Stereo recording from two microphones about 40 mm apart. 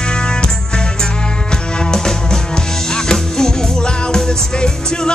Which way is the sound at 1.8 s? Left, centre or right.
Centre.